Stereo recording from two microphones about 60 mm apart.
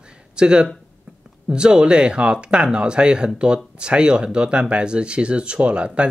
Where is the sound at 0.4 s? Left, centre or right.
Centre.